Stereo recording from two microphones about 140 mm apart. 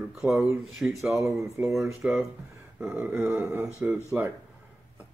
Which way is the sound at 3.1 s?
20° right (ahead or behind).